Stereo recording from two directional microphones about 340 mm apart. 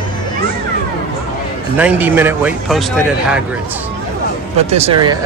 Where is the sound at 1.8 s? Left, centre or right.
Centre.